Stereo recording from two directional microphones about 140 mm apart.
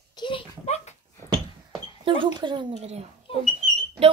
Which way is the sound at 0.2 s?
35° left (ahead or behind).